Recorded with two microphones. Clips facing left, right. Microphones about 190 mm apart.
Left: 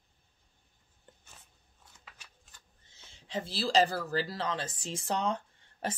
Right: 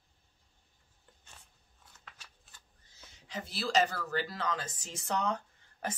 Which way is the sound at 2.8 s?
25° left (ahead or behind).